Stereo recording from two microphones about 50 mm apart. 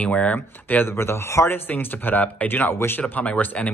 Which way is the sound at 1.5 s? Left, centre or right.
Left.